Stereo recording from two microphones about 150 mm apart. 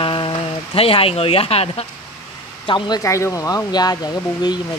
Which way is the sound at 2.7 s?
30° left (ahead or behind).